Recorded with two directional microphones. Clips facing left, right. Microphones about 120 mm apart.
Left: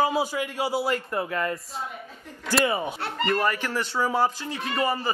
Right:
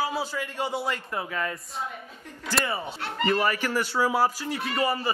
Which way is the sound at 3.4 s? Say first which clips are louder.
Even; 10° right (ahead or behind).